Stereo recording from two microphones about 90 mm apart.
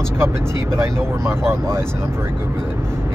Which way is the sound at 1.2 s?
30° right (ahead or behind).